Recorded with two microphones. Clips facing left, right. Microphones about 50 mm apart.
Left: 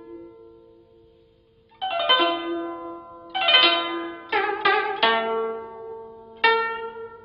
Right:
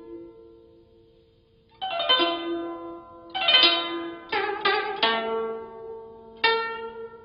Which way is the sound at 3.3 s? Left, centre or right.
Centre.